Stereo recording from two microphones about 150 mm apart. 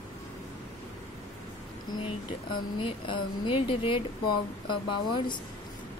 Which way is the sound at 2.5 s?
35° left (ahead or behind).